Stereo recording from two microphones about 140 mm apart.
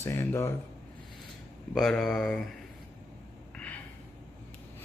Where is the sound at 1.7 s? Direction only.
5° left (ahead or behind).